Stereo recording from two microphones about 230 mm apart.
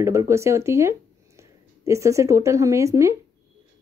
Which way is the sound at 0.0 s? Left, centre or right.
Centre.